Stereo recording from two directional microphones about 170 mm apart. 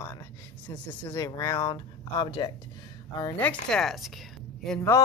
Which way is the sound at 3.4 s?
5° left (ahead or behind).